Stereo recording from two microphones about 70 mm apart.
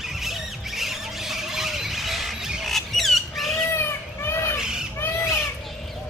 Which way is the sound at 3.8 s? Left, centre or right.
Left.